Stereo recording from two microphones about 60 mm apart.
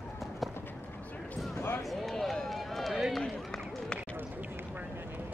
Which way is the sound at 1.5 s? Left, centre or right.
Left.